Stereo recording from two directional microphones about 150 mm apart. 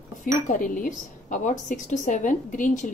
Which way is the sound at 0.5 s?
60° left (ahead or behind).